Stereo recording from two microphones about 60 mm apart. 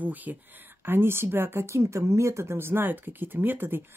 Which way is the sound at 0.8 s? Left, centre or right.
Right.